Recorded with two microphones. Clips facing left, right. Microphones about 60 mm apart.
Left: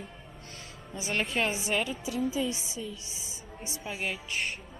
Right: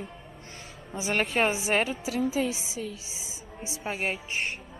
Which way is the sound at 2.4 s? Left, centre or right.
Right.